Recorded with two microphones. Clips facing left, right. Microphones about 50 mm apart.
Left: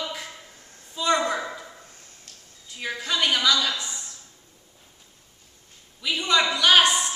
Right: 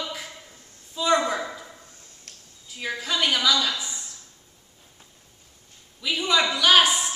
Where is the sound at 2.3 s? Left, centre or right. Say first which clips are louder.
Right 3 dB; right.